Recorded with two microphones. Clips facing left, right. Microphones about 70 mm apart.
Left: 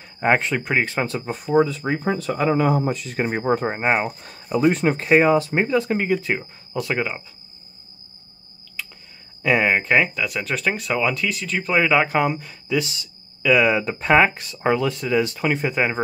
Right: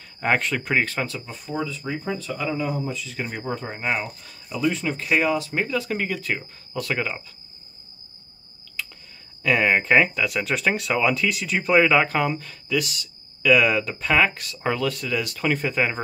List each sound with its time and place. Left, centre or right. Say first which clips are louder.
0.2 s speech: left 3 dB; left
1.0 s speech: left 6 dB; left
2.6 s speech: left 7 dB; left
3.3 s speech: left 10 dB; left
3.5 s speech: left 4 dB; left
5.0 s speech: left 6 dB; left; by 7.2 s centre
9.4 s speech: left 1 dB; centre